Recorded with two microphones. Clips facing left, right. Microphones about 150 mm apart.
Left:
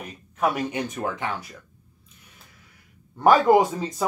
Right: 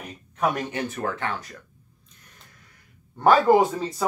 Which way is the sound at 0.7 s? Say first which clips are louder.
Even; 15° left (ahead or behind).